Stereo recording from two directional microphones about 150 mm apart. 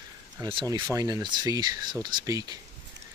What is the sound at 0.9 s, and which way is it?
Speech, 25° right (ahead or behind).